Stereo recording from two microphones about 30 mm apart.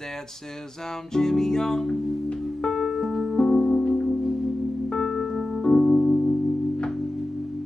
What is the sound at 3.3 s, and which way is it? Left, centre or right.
Music, left.